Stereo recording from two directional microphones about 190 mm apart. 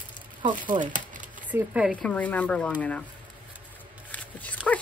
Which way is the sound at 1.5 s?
5° right (ahead or behind).